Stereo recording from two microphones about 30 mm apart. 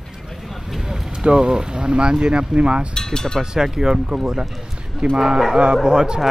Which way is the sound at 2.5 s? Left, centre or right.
Right.